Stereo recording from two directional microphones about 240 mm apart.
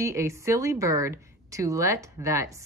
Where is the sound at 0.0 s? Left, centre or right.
Centre.